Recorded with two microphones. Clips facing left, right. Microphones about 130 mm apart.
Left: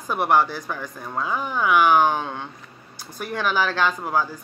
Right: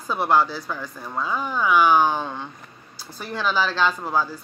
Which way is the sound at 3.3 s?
55° left (ahead or behind).